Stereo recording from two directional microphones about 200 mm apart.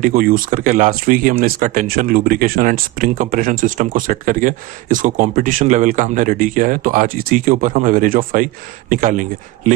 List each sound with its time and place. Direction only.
0.0 s speech: 45° right (ahead or behind)